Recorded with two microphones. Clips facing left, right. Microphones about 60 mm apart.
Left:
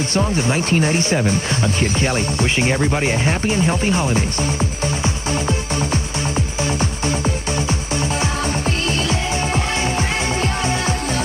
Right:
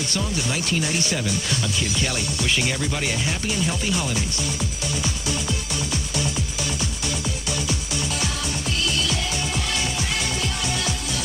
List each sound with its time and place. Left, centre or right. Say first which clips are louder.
0.1 s speech: left 9 dB; left
6.8 s music: left 7 dB; left